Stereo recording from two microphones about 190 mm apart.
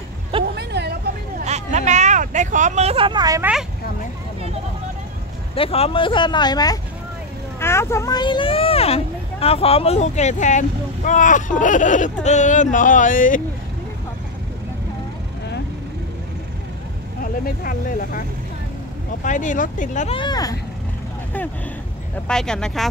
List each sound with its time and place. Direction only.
0.6 s vehicle: 60° right (ahead or behind)
1.4 s vehicle: 35° right (ahead or behind); by 3.4 s 20° right (ahead or behind)
5.5 s speech: 30° left (ahead or behind)
17.2 s speech: 45° left (ahead or behind)
19.2 s speech: 40° left (ahead or behind)
20.2 s speech: 20° left (ahead or behind)
22.3 s speech: 5° left (ahead or behind)